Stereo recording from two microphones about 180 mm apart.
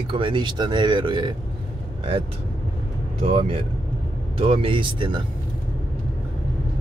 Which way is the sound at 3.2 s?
35° right (ahead or behind).